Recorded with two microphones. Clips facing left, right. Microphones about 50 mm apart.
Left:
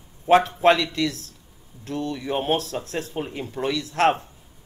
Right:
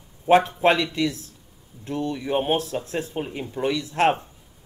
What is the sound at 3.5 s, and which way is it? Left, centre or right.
Speech, right.